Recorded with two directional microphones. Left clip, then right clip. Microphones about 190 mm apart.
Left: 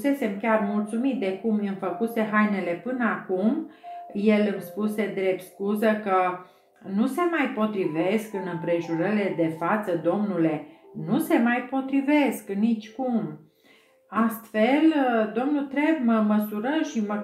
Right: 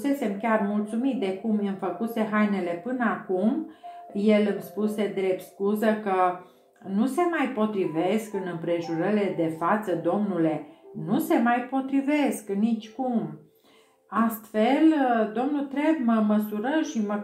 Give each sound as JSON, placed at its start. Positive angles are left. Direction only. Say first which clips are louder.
{"t": 0.0, "sound": "a woman's voice", "louder": "left 2 dB", "side_deg": -15}
{"t": 14.5, "sound": "a woman's voice", "louder": "even", "side_deg": -15}